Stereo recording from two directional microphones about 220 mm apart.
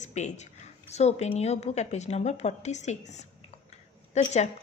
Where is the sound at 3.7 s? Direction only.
30° left (ahead or behind).